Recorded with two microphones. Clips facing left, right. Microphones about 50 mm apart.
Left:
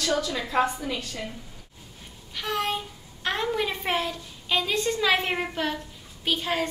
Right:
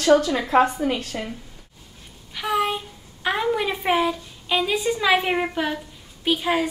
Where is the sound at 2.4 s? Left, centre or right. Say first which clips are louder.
Right 5 dB; centre.